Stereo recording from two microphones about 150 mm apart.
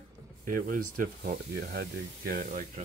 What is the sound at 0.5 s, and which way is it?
Speech, 70° right (ahead or behind).